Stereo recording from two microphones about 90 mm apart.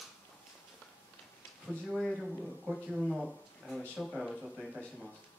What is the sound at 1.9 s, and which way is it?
Speech, centre (ahead or behind).